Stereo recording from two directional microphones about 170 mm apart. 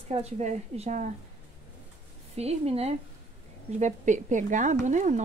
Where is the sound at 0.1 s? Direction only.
40° right (ahead or behind).